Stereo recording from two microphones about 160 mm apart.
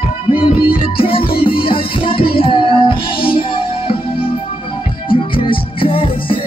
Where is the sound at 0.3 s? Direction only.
35° left (ahead or behind).